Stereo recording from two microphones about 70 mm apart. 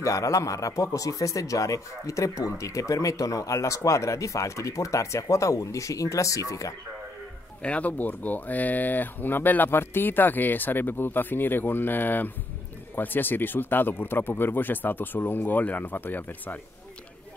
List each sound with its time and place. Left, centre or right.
0.0 s speech: left
7.6 s speech: centre